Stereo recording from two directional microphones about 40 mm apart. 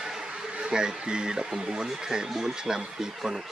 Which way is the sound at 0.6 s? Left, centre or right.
Centre.